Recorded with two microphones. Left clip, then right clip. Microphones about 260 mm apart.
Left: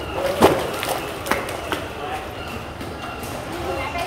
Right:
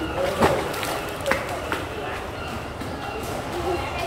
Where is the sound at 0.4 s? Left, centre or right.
Left.